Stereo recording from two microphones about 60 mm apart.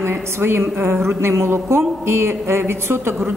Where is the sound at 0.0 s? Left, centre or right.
Right.